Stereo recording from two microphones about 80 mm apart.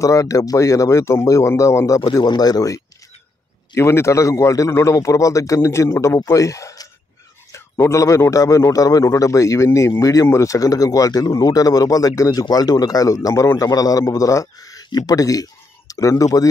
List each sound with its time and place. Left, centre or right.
0.0 s a man's voice: left
2.1 s a man's voice: left
3.7 s a man's voice: left